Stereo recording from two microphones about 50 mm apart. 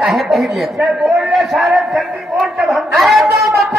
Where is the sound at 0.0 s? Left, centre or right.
Centre.